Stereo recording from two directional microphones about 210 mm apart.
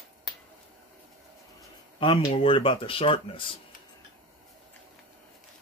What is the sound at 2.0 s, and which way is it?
Speech, 25° left (ahead or behind).